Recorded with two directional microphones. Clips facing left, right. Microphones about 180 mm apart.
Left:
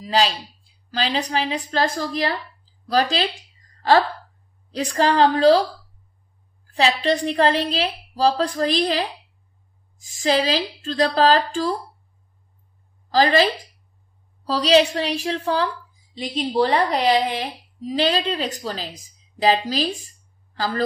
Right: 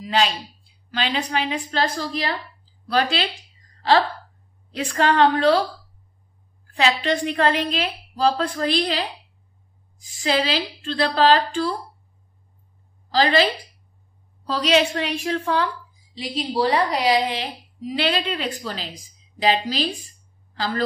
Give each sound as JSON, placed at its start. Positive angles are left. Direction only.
{"t": 0.0, "sound": "a woman's voice", "side_deg": 35}
{"t": 4.7, "sound": "a woman's voice", "side_deg": 35}
{"t": 6.7, "sound": "a woman's voice", "side_deg": 35}
{"t": 13.1, "sound": "a woman's voice", "side_deg": 45}
{"t": 16.2, "sound": "a woman's voice", "side_deg": 45}